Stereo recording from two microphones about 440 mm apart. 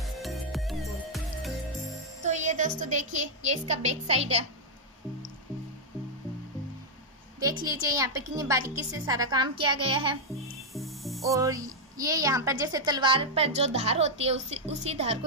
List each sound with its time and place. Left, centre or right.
0.0 s music: centre
2.2 s a woman's voice: centre
7.3 s speech: centre
10.7 s speech: centre